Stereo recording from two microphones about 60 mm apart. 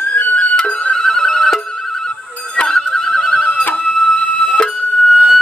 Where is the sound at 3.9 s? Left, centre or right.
Centre.